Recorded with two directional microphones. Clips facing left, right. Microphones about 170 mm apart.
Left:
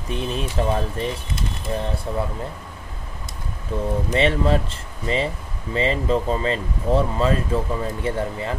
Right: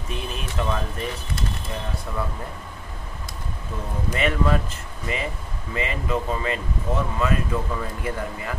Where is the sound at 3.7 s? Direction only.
30° left (ahead or behind).